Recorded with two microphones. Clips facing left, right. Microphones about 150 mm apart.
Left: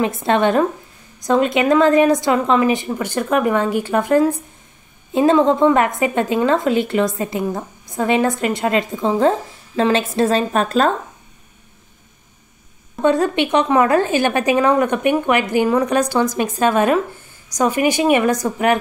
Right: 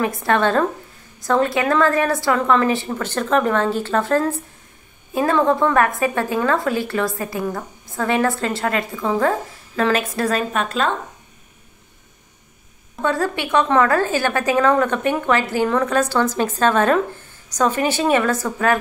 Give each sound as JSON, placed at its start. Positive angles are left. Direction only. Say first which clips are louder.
{"t": 0.0, "sound": "a woman's voice", "louder": "left 2 dB", "side_deg": 20}
{"t": 10.6, "sound": "speech", "louder": "left 5 dB", "side_deg": 40}
{"t": 13.0, "sound": "a woman's voice", "louder": "left 5 dB", "side_deg": 20}